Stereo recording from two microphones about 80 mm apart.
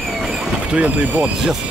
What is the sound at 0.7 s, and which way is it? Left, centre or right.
Speech, centre.